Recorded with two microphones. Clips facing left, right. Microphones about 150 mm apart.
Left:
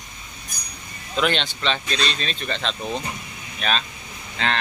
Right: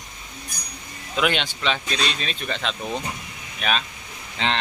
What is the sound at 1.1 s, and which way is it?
Speech, 10° right (ahead or behind).